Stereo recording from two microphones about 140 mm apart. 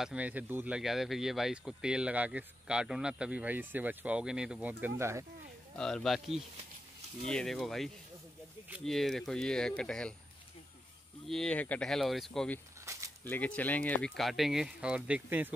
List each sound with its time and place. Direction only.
0.0 s speech: 10° right (ahead or behind)
5.8 s speech: 5° left (ahead or behind)
11.2 s speech: 5° left (ahead or behind)
12.8 s a sound: 20° right (ahead or behind)
13.2 s speech: 10° left (ahead or behind); by 15.5 s 15° right (ahead or behind)